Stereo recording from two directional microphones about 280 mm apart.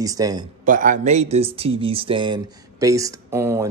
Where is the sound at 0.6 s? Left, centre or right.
Right.